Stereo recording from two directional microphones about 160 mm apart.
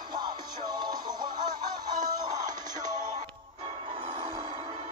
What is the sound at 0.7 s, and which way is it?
Music, 25° right (ahead or behind).